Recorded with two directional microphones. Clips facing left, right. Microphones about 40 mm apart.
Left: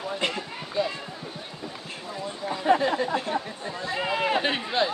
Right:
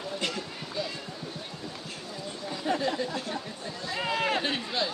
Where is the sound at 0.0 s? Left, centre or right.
Left.